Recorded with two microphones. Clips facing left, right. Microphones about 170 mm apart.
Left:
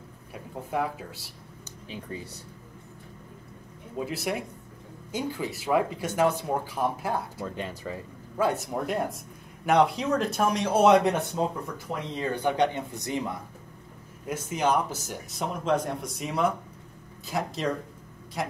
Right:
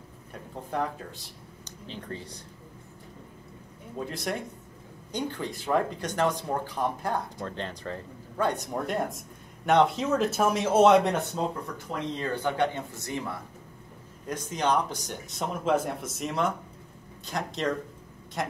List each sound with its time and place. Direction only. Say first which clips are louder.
0.3 s speech: left 2 dB; 10° left (ahead or behind)
4.0 s speech: left 2 dB; 5° left (ahead or behind)
11.6 s speech: right 1 dB; 10° left (ahead or behind)